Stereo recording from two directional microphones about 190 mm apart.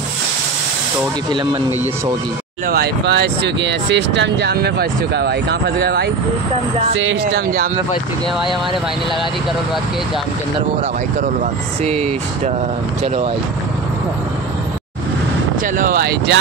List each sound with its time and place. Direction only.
1.3 s speech: 25° right (ahead or behind)
2.7 s speech: 60° right (ahead or behind)
7.0 s speech: 90° right
7.4 s speech: 50° right (ahead or behind)
11.8 s speech: 35° right (ahead or behind)
15.6 s speech: 45° right (ahead or behind)